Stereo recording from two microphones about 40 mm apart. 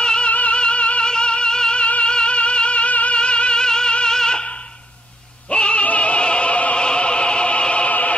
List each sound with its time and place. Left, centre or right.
0.0 s music: left
0.3 s music: left; by 4.5 s centre
5.5 s music: left
5.9 s opera: left
7.9 s music: left